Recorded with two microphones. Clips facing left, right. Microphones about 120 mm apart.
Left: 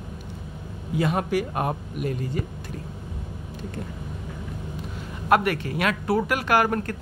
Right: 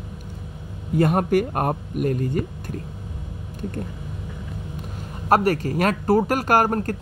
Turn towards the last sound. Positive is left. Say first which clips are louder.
# right 3 dB
turn(degrees=-40)  # may be behind; listen again after turning